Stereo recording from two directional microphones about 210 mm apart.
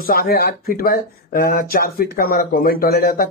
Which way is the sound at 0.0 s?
45° left (ahead or behind).